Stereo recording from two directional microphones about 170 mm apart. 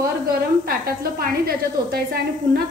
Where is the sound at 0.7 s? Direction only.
60° right (ahead or behind).